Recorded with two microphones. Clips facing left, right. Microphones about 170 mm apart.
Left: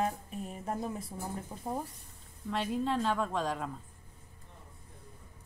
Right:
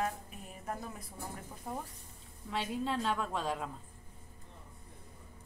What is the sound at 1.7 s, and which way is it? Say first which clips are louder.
Speech: left 4 dB; 30° left (ahead or behind).